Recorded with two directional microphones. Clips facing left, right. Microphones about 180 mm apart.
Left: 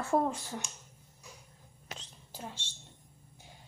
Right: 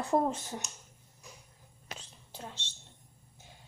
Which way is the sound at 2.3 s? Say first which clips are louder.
Left 1 dB; 10° left (ahead or behind).